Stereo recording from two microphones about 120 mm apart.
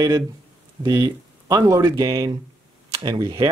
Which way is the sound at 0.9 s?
30° right (ahead or behind).